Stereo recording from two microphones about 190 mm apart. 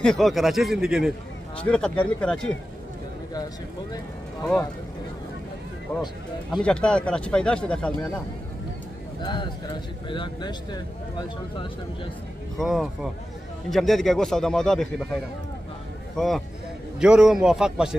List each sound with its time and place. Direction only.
0.0 s speech: centre (ahead or behind)
5.9 s speech: 10° left (ahead or behind)
9.2 s speech: 25° left (ahead or behind)
12.5 s speech: centre (ahead or behind)
16.2 s speech: centre (ahead or behind)